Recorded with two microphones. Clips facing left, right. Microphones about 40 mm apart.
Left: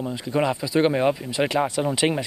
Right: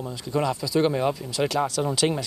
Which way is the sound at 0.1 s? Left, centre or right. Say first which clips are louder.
Left 2 dB; left.